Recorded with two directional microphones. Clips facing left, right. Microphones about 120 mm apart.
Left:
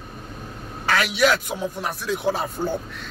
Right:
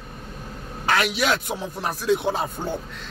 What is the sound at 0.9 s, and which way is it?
A man's voice, 25° right (ahead or behind).